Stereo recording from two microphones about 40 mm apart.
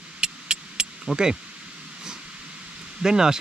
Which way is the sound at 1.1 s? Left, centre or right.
Right.